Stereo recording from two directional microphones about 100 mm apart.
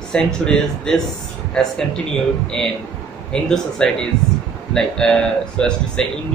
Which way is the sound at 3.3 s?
5° left (ahead or behind).